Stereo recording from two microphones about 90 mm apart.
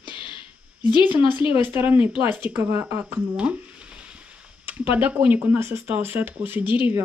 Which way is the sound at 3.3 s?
15° right (ahead or behind).